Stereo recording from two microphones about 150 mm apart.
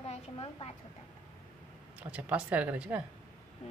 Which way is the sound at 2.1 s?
10° right (ahead or behind).